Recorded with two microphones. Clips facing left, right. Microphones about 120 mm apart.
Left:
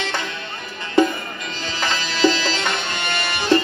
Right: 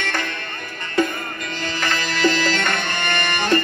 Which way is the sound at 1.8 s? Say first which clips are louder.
Left 2 dB; 50° right (ahead or behind).